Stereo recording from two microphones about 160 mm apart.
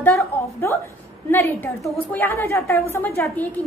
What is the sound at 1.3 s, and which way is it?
A woman's voice, 10° left (ahead or behind).